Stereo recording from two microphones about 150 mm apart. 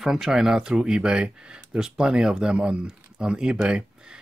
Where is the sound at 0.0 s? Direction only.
Centre (ahead or behind).